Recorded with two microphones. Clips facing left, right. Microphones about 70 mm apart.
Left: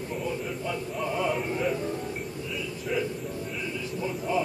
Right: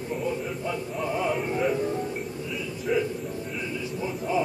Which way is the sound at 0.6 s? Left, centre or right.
Centre.